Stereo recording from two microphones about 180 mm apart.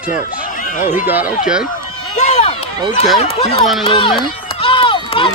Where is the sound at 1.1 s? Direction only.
10° right (ahead or behind).